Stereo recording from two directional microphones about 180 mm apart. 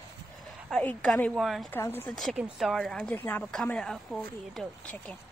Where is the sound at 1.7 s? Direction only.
10° left (ahead or behind).